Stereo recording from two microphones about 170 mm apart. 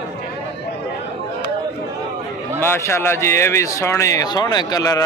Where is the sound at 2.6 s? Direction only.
15° left (ahead or behind).